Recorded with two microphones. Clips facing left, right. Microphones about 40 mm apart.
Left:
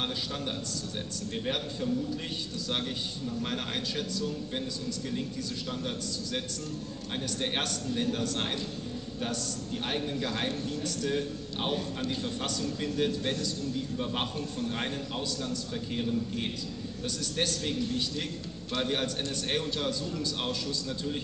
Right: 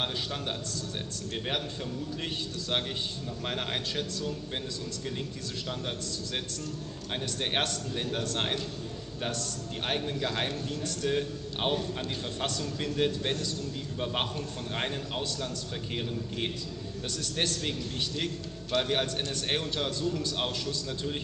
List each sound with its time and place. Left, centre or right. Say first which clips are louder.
7.5 s a man's voice: right 1 dB; right
9.8 s a man's voice: right 2 dB; right
18.7 s a man's voice: right 2 dB; right